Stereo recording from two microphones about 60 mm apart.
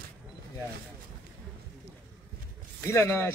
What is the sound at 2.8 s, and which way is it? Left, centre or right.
Speech, left.